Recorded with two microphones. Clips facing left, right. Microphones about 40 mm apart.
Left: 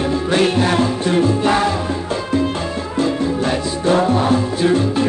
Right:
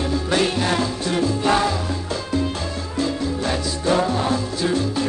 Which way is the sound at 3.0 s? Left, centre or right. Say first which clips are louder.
Left 5 dB; left.